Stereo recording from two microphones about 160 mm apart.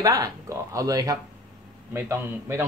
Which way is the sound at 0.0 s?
20° right (ahead or behind).